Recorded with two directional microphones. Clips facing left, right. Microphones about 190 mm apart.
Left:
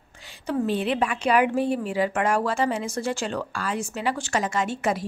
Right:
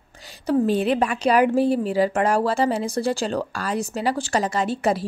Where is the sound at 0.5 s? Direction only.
40° right (ahead or behind).